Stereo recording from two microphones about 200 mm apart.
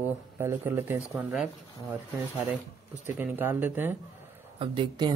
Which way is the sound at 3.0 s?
10° right (ahead or behind).